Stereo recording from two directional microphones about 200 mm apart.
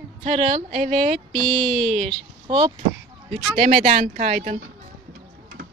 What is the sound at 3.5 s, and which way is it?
Speech, 35° right (ahead or behind).